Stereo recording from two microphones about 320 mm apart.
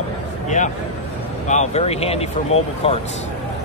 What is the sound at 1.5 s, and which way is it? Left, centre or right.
Speech, left.